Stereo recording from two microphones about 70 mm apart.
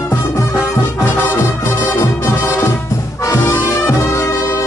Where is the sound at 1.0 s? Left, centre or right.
Left.